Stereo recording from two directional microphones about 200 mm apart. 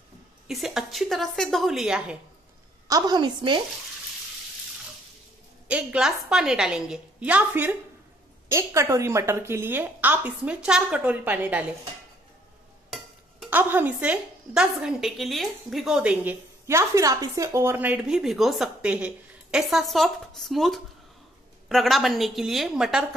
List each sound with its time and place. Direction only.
0.5 s speech: centre (ahead or behind)
2.9 s a woman's voice: 20° right (ahead or behind)
5.7 s speech: 5° right (ahead or behind)
12.9 s speech: 5° right (ahead or behind)